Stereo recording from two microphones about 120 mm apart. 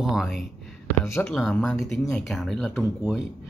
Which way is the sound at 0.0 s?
Centre (ahead or behind).